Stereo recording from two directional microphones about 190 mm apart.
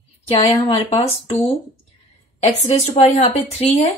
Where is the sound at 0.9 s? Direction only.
30° left (ahead or behind).